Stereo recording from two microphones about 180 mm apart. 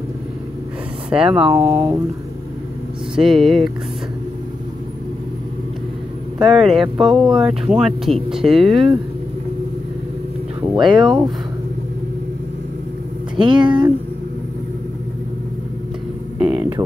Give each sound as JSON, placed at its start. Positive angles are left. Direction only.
{"t": 1.1, "sound": "speech", "side_deg": -5}
{"t": 3.2, "sound": "speech", "side_deg": 0}
{"t": 6.4, "sound": "speech", "side_deg": 0}
{"t": 10.8, "sound": "speech", "side_deg": 0}
{"t": 13.5, "sound": "speech", "side_deg": -25}
{"t": 16.3, "sound": "a sound", "side_deg": -5}